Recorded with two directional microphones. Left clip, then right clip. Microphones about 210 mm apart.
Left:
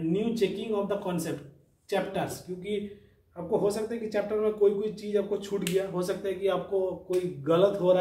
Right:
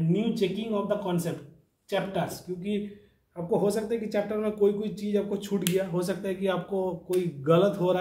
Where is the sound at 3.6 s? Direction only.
40° right (ahead or behind).